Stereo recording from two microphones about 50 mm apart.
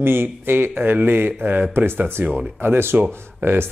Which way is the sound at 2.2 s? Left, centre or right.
Right.